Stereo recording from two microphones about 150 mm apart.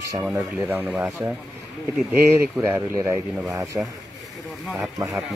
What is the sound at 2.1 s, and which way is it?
Speech, 15° right (ahead or behind).